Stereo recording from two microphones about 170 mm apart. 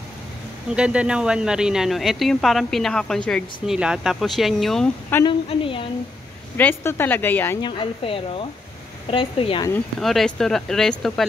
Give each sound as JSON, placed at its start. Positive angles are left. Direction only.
{"t": 0.7, "sound": "speech", "side_deg": -5}
{"t": 5.2, "sound": "speech", "side_deg": 30}
{"t": 6.5, "sound": "speech", "side_deg": 10}
{"t": 7.6, "sound": "speech", "side_deg": 30}
{"t": 9.9, "sound": "speech", "side_deg": 0}